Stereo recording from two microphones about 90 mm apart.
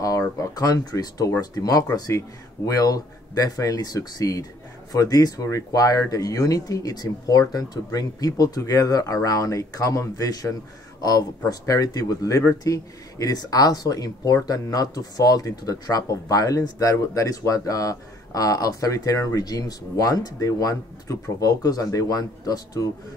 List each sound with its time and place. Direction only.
0.4 s speech: 40° left (ahead or behind)